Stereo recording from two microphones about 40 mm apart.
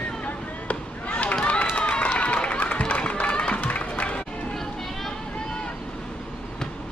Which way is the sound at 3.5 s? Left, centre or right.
Left.